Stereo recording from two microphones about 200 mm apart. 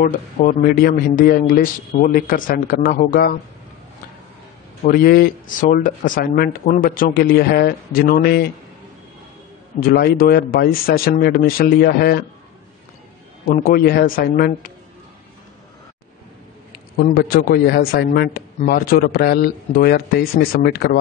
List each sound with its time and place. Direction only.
0.0 s a man's voice: 45° left (ahead or behind)
4.8 s a man's voice: 45° left (ahead or behind)
9.8 s a man's voice: 50° left (ahead or behind)
13.6 s a man's voice: 45° left (ahead or behind)
17.0 s a man's voice: 50° left (ahead or behind)